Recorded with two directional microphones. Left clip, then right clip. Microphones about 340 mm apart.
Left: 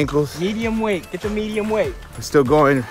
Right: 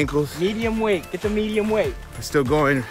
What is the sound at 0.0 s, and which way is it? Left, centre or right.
Speech, centre.